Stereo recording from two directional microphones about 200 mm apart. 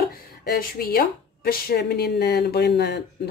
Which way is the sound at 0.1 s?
50° left (ahead or behind).